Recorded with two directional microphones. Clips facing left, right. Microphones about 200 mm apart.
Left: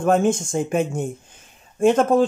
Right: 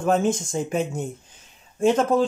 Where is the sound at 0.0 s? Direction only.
50° left (ahead or behind).